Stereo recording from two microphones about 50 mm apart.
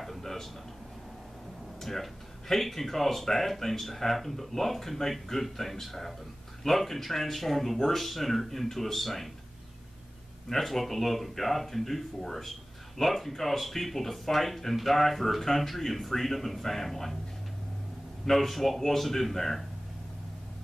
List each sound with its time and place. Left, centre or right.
0.0 s a sound: centre
1.8 s speech: centre
10.5 s speech: centre
18.2 s speech: centre